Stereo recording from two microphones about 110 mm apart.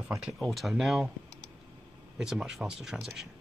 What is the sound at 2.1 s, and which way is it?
Speech, 5° right (ahead or behind).